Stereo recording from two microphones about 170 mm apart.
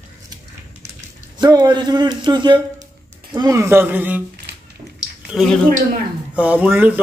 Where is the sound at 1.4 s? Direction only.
25° right (ahead or behind).